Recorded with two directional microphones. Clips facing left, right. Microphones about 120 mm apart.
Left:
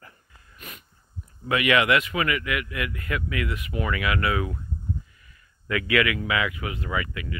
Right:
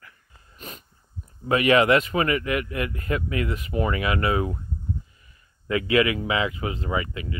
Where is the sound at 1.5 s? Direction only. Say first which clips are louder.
Right 3 dB; 35° right (ahead or behind).